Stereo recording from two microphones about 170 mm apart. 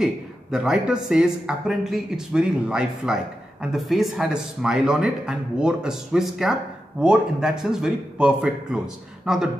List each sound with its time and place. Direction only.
0.0 s a man's voice: 5° right (ahead or behind)